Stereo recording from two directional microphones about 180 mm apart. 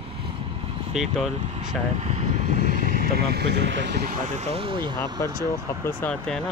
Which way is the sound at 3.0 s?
60° right (ahead or behind).